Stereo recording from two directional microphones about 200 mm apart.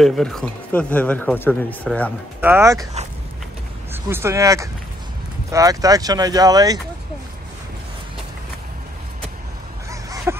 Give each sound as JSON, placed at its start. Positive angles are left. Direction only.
{"t": 0.0, "sound": "speech", "side_deg": 0}
{"t": 2.4, "sound": "speech", "side_deg": -15}
{"t": 3.9, "sound": "speech", "side_deg": -10}
{"t": 10.3, "sound": "a sound", "side_deg": -10}